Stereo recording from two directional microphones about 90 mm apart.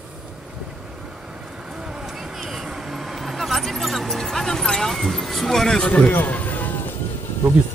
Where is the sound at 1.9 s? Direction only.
5° right (ahead or behind); by 6.7 s 20° left (ahead or behind).